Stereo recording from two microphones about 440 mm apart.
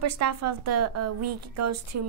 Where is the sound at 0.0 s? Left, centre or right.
Right.